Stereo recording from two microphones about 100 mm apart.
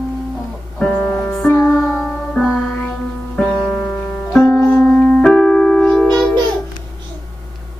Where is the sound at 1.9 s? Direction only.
5° left (ahead or behind).